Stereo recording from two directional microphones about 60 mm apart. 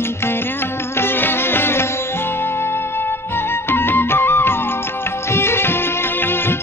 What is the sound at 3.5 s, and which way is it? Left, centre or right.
Music, left.